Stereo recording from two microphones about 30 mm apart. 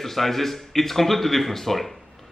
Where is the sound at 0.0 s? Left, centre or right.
Centre.